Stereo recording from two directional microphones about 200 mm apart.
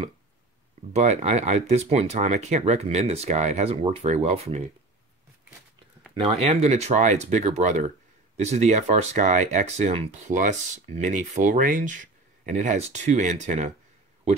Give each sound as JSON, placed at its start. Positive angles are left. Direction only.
{"t": 0.9, "sound": "speech", "side_deg": -35}
{"t": 6.1, "sound": "speech", "side_deg": -30}